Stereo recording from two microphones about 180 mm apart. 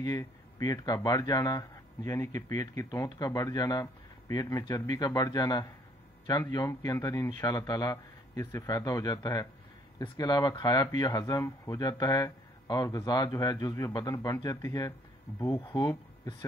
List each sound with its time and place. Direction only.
0.0 s speech: 20° left (ahead or behind)